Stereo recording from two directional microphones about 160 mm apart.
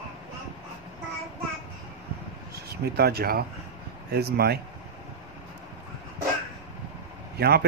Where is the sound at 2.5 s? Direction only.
80° right.